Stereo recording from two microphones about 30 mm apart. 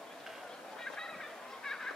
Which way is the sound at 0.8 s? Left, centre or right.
Centre.